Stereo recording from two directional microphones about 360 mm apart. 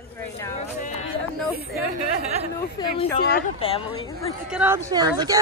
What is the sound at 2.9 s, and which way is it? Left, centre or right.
A woman's voice, left.